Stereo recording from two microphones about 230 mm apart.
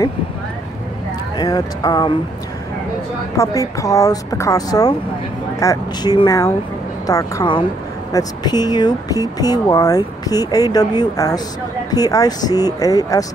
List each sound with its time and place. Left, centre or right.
1.4 s speech: centre
3.3 s speech: centre